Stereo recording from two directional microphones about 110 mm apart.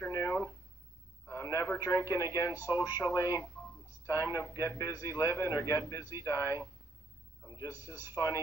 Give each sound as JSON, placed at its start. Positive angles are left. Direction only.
{"t": 0.1, "sound": "a sound", "side_deg": 30}
{"t": 1.2, "sound": "a man's voice", "side_deg": 30}
{"t": 2.5, "sound": "a man's voice", "side_deg": -20}
{"t": 3.0, "sound": "a man's voice", "side_deg": 25}
{"t": 7.7, "sound": "a man's voice", "side_deg": -20}